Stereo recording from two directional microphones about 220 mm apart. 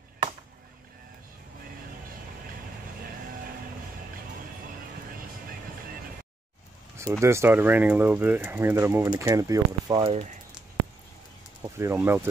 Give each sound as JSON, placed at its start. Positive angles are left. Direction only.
{"t": 7.0, "sound": "speech", "side_deg": -15}
{"t": 11.6, "sound": "speech", "side_deg": -10}